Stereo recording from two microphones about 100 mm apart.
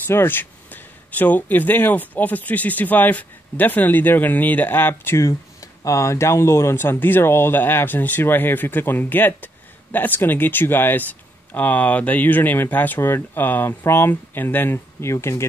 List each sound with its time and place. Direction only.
0.0 s speech: 25° left (ahead or behind)